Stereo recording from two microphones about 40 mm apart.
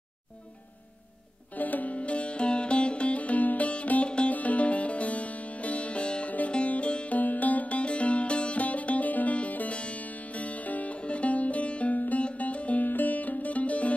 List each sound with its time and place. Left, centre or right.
1.5 s sitar: left
4.3 s music: left
7.2 s music: left
12.8 s music: left